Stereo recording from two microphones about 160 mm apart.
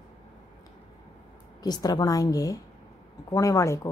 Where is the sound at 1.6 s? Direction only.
25° left (ahead or behind).